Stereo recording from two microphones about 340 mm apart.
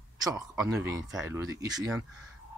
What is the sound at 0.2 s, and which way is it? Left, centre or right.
Speech, centre.